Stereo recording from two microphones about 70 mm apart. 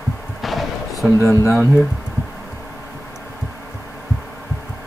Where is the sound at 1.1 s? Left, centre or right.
Left.